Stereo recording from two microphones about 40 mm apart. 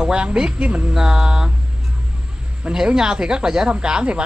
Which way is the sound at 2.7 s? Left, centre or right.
Centre.